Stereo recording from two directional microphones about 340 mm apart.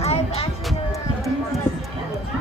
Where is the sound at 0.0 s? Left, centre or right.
Centre.